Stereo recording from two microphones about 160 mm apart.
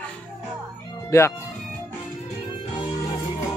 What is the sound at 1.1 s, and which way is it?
Speech, 20° left (ahead or behind).